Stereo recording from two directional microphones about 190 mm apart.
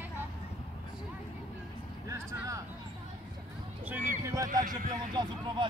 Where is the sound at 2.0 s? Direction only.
15° right (ahead or behind).